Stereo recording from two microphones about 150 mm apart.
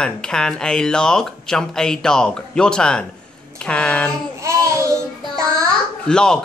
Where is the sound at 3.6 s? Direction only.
5° left (ahead or behind).